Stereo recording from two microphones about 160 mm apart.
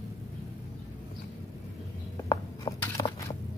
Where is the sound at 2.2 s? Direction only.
20° left (ahead or behind).